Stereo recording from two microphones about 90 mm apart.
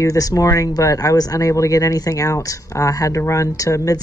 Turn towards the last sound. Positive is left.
turn(degrees=40)  # may be behind; listen again after turning